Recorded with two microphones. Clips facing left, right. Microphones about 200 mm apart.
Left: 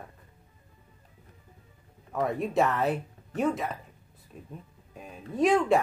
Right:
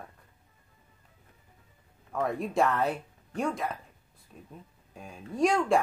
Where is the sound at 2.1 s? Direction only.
Centre (ahead or behind).